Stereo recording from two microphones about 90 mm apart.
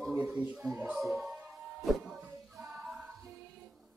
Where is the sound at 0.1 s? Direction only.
15° right (ahead or behind).